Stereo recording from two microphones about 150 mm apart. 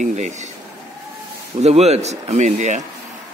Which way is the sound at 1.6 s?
45° right (ahead or behind).